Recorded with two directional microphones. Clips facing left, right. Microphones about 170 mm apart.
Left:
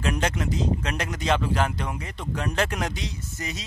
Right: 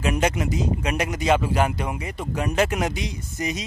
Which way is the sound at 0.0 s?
10° right (ahead or behind).